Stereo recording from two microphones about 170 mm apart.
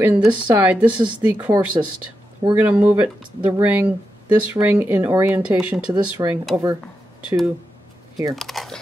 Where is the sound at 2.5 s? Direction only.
10° right (ahead or behind).